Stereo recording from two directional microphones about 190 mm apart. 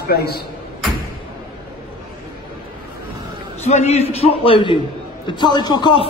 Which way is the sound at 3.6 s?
35° left (ahead or behind).